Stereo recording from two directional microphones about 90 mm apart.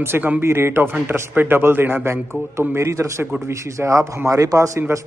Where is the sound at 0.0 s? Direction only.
30° right (ahead or behind).